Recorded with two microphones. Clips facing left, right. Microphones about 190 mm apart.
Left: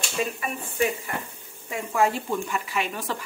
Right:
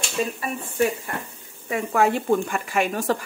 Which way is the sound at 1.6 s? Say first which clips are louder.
Right 3 dB; 60° right (ahead or behind).